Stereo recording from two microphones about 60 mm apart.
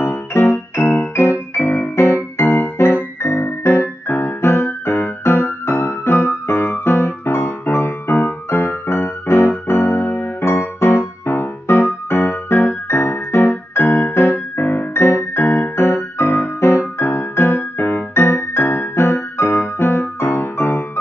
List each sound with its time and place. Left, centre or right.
0.0 s music: left
1.6 s music: left
2.3 s music: left
6.5 s music: left